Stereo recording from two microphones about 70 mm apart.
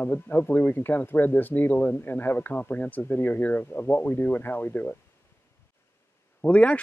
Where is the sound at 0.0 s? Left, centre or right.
Left.